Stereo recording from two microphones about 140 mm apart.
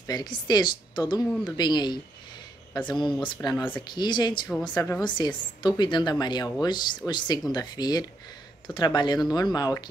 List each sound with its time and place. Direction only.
0.0 s a woman's voice: 30° left (ahead or behind)